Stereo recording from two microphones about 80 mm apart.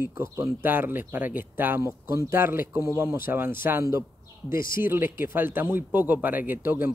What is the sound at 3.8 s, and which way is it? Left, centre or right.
Speech, right.